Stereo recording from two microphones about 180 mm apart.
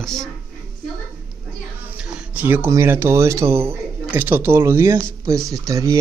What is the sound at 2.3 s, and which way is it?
Speech, 10° right (ahead or behind).